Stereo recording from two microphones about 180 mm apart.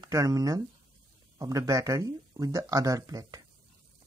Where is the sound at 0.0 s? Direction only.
20° right (ahead or behind).